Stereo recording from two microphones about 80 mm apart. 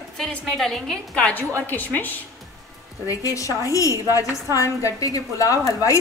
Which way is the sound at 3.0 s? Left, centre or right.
Left.